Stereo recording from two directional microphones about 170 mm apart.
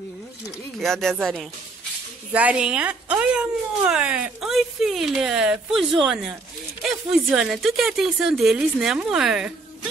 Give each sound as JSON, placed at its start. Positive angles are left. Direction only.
{"t": 0.7, "sound": "speech", "side_deg": 0}